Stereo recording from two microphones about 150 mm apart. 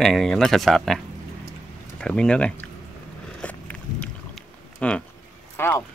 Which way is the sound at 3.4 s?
10° left (ahead or behind).